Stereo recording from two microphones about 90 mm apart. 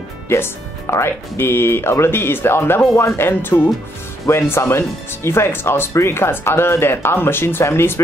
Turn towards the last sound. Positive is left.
turn(degrees=25)  # may be behind; listen again after turning